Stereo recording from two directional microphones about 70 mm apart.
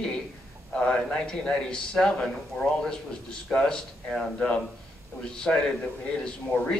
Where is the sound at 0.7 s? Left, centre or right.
Centre.